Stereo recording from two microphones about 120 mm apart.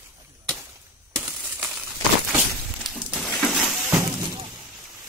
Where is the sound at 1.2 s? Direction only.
10° right (ahead or behind).